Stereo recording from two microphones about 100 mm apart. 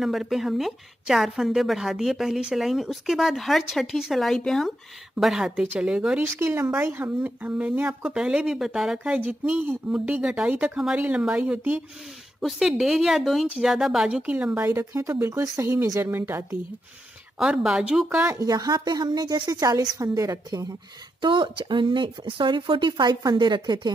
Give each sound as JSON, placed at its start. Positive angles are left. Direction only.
{"t": 0.0, "sound": "a woman's voice", "side_deg": 0}
{"t": 6.4, "sound": "a woman's voice", "side_deg": -25}
{"t": 12.4, "sound": "a woman's voice", "side_deg": 0}
{"t": 17.4, "sound": "a woman's voice", "side_deg": -5}
{"t": 18.3, "sound": "a woman's voice", "side_deg": -35}
{"t": 21.2, "sound": "speech", "side_deg": -55}